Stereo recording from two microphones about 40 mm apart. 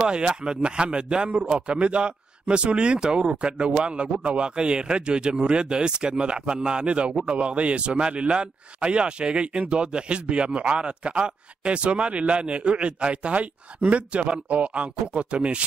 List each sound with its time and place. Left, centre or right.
0.0 s a man's voice: right